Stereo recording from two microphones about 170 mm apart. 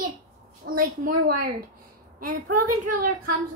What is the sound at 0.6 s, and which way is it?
Speech, 90° right.